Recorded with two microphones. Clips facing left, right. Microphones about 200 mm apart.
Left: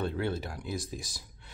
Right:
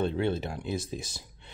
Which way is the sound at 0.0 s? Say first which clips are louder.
Right 4 dB; 25° right (ahead or behind).